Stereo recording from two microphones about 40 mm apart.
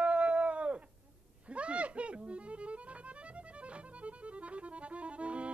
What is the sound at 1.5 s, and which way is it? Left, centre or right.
Music, right.